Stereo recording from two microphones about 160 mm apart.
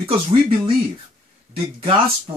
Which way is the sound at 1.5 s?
35° right (ahead or behind).